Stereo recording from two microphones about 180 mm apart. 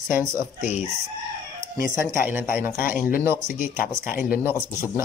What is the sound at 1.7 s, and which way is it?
Speech, 15° right (ahead or behind).